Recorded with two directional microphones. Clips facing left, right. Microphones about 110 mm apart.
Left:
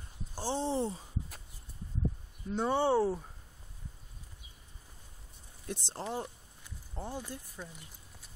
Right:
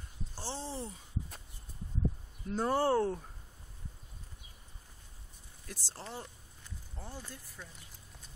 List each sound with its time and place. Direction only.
0.3 s a sound: 15° left (ahead or behind)
2.5 s speech: centre (ahead or behind)
5.7 s speech: 20° left (ahead or behind)